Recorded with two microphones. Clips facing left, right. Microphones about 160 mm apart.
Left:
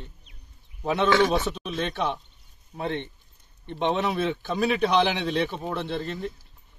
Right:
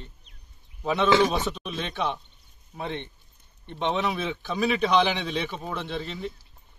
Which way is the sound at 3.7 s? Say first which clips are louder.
Left 2 dB; 15° left (ahead or behind).